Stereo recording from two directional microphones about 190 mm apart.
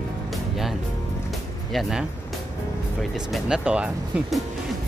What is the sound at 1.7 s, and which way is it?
Speech, centre (ahead or behind).